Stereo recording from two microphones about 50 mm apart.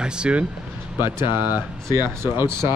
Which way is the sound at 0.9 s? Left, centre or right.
Right.